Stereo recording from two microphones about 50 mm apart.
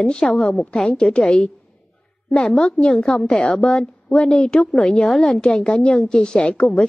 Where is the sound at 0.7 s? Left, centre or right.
Centre.